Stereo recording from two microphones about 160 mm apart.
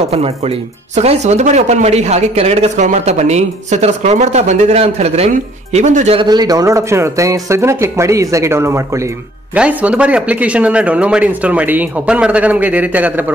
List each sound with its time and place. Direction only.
0.9 s speech: 45° right (ahead or behind)
6.2 s speech: 25° right (ahead or behind)